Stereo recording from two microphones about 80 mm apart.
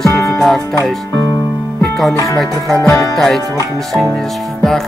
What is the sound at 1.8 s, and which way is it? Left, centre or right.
Music, centre.